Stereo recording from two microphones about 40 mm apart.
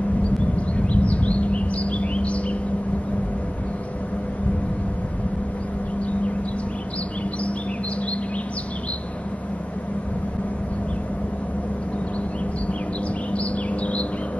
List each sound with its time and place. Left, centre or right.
0.6 s chirp: left
13.3 s bird: left